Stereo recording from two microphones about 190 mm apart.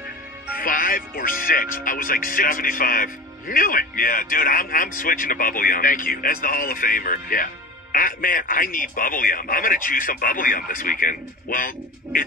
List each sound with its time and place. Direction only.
0.6 s speech: 50° left (ahead or behind)